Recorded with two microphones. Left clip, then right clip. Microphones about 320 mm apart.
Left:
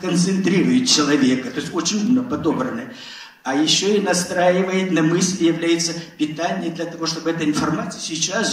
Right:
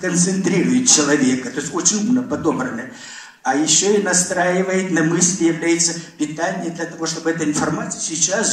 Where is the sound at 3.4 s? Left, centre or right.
Right.